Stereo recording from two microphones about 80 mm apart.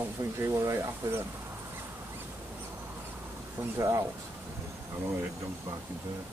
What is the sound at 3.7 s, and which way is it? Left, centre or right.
Speech, right.